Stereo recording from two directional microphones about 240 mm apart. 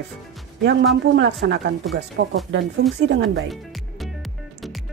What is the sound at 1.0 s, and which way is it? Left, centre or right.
A woman's voice, right.